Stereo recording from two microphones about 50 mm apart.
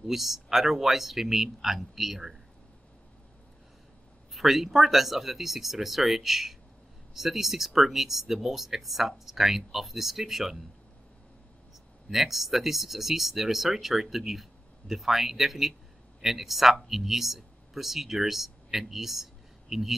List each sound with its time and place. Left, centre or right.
0.0 s speech: centre
4.3 s speech: centre
12.1 s speech: centre